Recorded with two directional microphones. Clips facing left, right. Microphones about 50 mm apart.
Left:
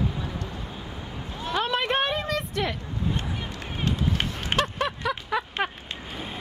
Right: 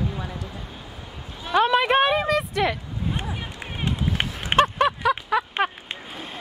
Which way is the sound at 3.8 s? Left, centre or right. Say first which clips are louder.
Right 1 dB; right.